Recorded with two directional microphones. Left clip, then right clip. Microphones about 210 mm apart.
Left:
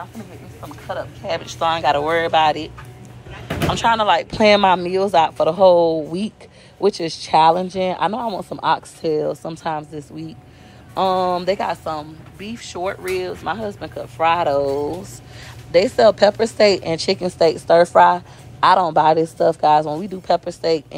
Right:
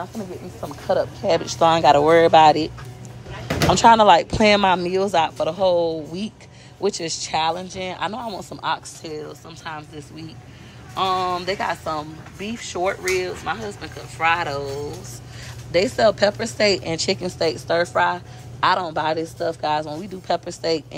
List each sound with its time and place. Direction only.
0.9 s a woman's voice: 30° right (ahead or behind); by 8.4 s centre (ahead or behind)
8.4 s chopping: 20° left (ahead or behind)
8.6 s a woman's voice: 5° left (ahead or behind)
9.4 s speech: 20° left (ahead or behind)
15.7 s a woman's voice: 10° right (ahead or behind)